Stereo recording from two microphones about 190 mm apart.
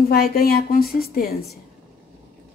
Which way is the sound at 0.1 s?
50° left (ahead or behind).